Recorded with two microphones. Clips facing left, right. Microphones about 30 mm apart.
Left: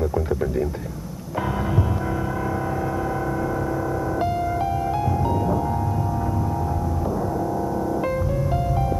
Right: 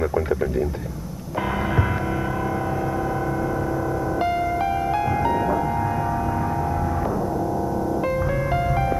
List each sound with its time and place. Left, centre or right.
4.2 s music: right
5.1 s music: right
8.3 s music: right